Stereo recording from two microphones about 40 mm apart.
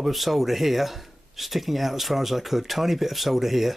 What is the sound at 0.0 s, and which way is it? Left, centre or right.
Speech, centre.